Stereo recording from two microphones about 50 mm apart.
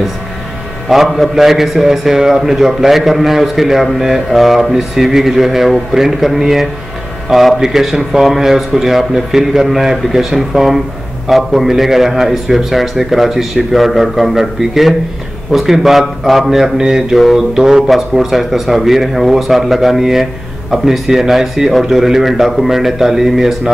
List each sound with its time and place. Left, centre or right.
0.8 s a man's voice: centre
17.2 s a man's voice: centre